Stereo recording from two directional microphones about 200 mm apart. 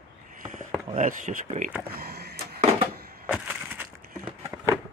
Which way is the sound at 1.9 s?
50° right (ahead or behind).